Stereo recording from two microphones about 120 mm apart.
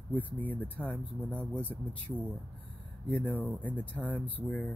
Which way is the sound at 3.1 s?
15° left (ahead or behind).